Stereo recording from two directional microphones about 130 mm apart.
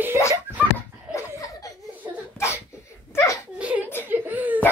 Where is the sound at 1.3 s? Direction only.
25° left (ahead or behind).